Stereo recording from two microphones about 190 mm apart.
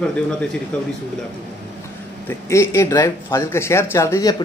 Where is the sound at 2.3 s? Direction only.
15° left (ahead or behind).